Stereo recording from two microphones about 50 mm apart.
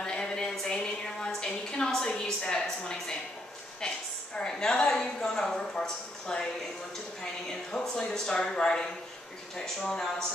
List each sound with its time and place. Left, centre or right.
0.0 s a sound: centre
3.8 s a woman's voice: centre
7.7 s a woman's voice: centre